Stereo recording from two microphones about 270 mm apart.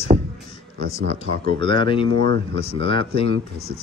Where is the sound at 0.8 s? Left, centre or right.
Right.